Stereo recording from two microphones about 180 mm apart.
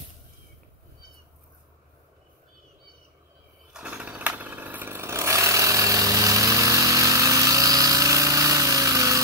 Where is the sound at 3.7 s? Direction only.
5° right (ahead or behind).